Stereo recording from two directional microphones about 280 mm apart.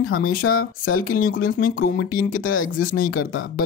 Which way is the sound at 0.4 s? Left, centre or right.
Left.